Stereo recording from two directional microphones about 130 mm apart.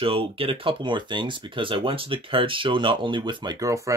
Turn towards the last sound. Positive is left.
turn(degrees=-25)  # may be behind; listen again after turning